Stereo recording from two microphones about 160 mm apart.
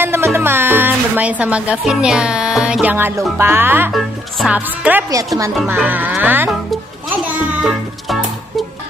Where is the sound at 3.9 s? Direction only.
5° right (ahead or behind).